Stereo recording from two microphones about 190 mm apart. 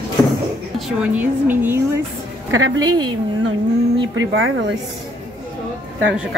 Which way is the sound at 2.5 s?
90° right.